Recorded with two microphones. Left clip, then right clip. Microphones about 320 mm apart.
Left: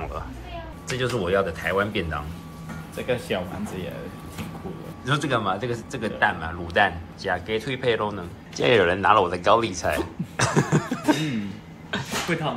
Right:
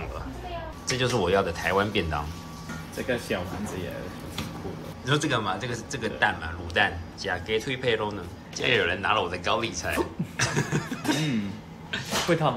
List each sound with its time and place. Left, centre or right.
0.8 s speech: centre
3.3 s speech: centre
5.0 s speech: centre
12.3 s speech: right